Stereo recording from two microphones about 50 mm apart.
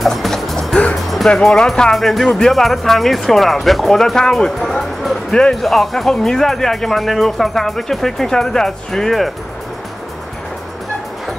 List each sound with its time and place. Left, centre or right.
0.0 s music: centre
1.4 s speech: centre
5.3 s speech: centre
5.6 s speech: centre